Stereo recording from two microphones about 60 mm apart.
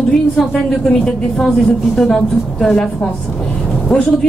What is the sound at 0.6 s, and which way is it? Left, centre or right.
A woman's voice, centre.